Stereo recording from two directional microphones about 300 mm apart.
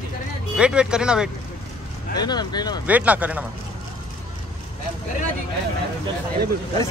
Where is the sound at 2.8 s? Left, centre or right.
Centre.